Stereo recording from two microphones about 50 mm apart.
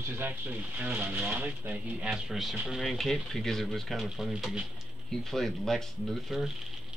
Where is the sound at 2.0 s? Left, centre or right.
Centre.